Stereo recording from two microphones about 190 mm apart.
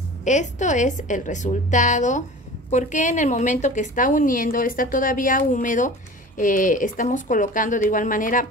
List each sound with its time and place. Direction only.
0.2 s a woman's voice: 40° left (ahead or behind)